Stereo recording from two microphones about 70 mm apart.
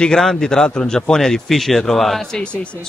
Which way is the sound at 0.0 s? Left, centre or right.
Centre.